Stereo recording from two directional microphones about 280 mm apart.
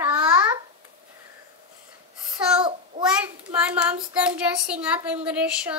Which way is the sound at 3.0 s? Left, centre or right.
Centre.